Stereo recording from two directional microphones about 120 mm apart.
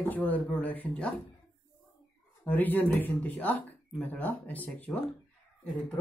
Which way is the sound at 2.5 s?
15° left (ahead or behind).